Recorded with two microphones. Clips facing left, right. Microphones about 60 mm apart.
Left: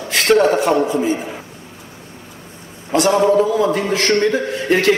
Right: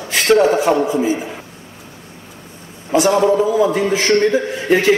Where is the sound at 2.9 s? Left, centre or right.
Centre.